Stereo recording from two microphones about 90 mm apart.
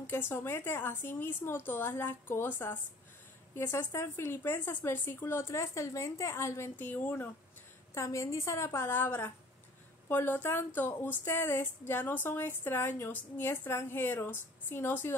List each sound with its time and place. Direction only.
0.0 s a woman's voice: 25° left (ahead or behind)